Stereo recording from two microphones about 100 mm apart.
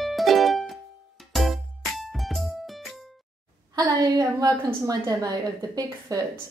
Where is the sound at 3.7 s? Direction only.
40° right (ahead or behind).